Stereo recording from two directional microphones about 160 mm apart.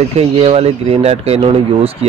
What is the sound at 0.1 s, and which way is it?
Speech, 40° right (ahead or behind).